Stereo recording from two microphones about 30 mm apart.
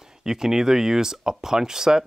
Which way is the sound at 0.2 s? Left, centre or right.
Centre.